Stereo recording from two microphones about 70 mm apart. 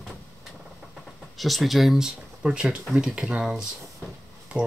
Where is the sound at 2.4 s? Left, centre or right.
Centre.